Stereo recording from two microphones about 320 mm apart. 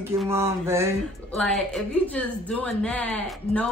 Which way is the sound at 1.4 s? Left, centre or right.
Centre.